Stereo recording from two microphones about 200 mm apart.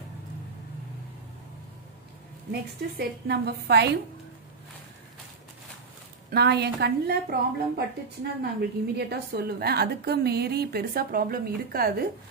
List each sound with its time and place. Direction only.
2.5 s a woman's voice: 55° right (ahead or behind)
6.3 s a woman's voice: 55° right (ahead or behind)